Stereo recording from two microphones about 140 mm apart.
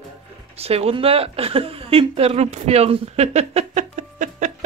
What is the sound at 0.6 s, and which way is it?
A woman's voice, 45° right (ahead or behind).